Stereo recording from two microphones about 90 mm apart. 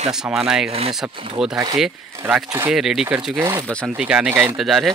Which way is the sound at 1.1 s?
80° right.